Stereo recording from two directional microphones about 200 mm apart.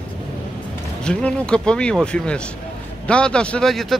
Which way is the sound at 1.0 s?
5° left (ahead or behind).